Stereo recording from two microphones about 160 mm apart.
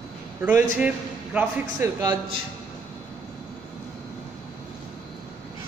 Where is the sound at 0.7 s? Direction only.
10° right (ahead or behind).